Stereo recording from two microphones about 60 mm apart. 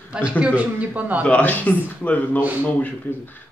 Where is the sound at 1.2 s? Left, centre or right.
Left.